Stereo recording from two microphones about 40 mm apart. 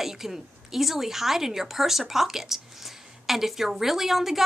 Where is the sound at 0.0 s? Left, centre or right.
Centre.